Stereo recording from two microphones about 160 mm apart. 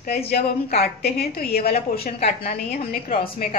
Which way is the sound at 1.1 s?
75° left (ahead or behind).